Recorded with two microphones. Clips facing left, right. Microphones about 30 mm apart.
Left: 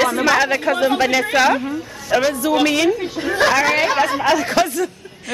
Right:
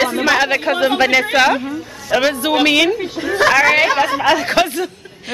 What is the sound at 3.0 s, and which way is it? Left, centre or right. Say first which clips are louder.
Speech: right 2 dB; centre.